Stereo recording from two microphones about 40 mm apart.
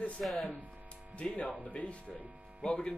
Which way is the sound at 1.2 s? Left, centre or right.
Left.